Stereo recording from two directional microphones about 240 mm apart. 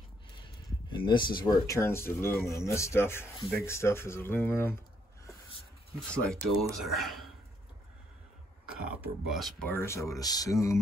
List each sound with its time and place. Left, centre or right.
0.8 s speech: centre
5.9 s speech: centre
8.6 s speech: centre